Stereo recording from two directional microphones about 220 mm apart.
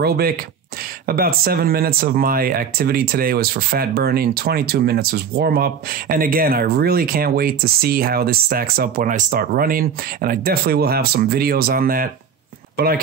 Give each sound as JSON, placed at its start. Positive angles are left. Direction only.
{"t": 0.0, "sound": "speech", "side_deg": -45}